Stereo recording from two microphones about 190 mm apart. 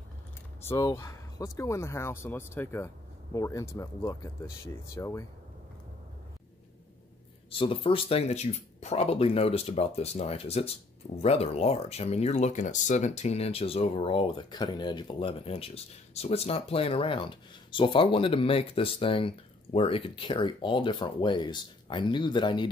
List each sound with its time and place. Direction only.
0.6 s speech: 15° left (ahead or behind)
7.5 s speech: 30° left (ahead or behind)